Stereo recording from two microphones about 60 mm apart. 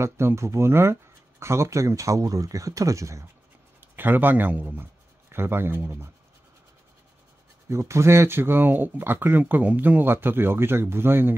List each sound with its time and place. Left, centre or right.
0.0 s speech: right
3.8 s speech: right
7.6 s speech: right